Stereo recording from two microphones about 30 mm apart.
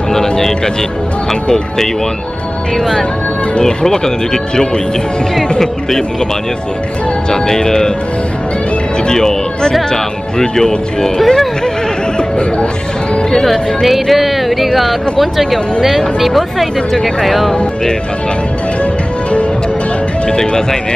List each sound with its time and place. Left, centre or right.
0.1 s speech: centre
2.8 s speech: centre
7.2 s speech: left
9.0 s speech: left
11.1 s speech: centre
12.2 s music: left
13.3 s speech: centre
20.2 s speech: left